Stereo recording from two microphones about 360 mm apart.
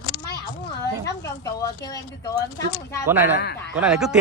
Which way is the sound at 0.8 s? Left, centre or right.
Centre.